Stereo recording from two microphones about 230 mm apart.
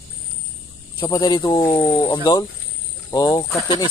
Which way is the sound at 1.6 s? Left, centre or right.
Centre.